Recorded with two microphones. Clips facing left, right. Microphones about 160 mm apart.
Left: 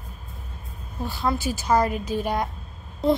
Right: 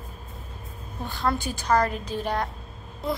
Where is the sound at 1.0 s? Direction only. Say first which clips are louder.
Left 2 dB; 5° left (ahead or behind).